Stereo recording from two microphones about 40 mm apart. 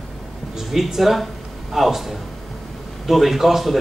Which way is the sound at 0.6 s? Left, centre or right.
Centre.